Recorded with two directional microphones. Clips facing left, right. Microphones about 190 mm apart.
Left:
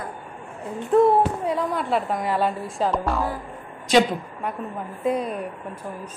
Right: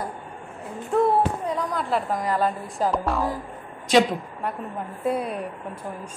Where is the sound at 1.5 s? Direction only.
Centre (ahead or behind).